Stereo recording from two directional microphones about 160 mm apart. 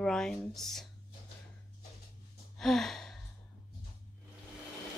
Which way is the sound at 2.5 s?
Centre (ahead or behind).